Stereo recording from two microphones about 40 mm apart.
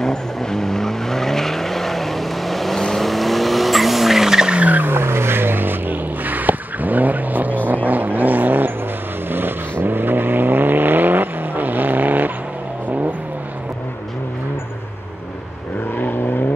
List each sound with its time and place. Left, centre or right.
0.0 s vehicle: centre
4.6 s vehicle: right
4.9 s vehicle: right
9.3 s vehicle: right